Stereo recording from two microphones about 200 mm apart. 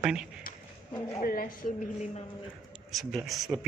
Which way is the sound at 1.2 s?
45° left (ahead or behind).